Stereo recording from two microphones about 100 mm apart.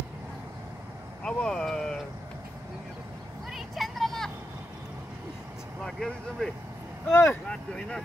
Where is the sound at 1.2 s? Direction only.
5° left (ahead or behind).